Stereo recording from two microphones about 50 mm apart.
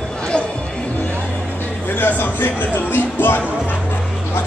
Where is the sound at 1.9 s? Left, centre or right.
Left.